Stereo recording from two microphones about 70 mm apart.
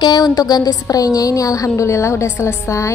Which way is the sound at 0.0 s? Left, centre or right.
Left.